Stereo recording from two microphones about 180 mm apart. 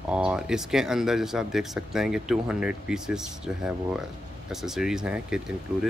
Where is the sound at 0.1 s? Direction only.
5° right (ahead or behind).